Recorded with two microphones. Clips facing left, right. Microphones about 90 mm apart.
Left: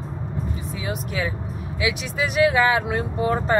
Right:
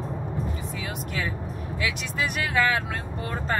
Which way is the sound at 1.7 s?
5° left (ahead or behind).